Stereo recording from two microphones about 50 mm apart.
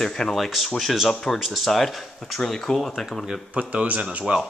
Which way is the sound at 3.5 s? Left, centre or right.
Right.